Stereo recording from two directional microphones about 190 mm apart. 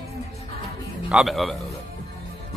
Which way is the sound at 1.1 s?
Centre (ahead or behind).